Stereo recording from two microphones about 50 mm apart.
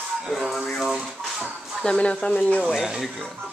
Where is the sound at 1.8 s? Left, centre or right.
Left.